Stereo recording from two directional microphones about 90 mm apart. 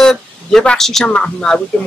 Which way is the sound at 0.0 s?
5° left (ahead or behind).